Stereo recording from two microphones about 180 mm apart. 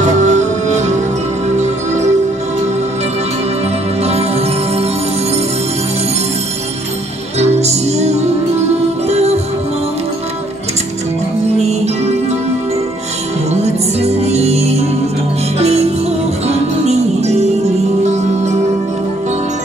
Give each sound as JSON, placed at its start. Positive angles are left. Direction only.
{"t": 0.0, "sound": "music", "side_deg": -40}
{"t": 4.0, "sound": "music", "side_deg": -35}
{"t": 7.3, "sound": "music", "side_deg": -35}
{"t": 13.5, "sound": "music", "side_deg": -35}
{"t": 16.4, "sound": "music", "side_deg": -35}